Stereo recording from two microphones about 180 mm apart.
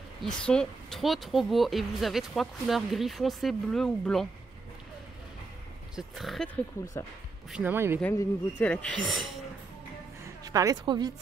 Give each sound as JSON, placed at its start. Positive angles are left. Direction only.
{"t": 0.2, "sound": "speech", "side_deg": 5}
{"t": 5.9, "sound": "speech", "side_deg": 0}
{"t": 7.5, "sound": "speech", "side_deg": -10}
{"t": 8.0, "sound": "speech", "side_deg": 10}
{"t": 10.4, "sound": "a woman's voice", "side_deg": -20}